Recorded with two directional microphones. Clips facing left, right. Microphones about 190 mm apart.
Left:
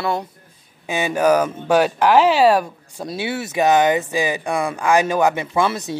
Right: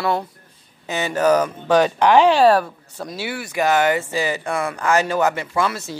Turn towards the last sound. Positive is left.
turn(degrees=20)  # may be behind; listen again after turning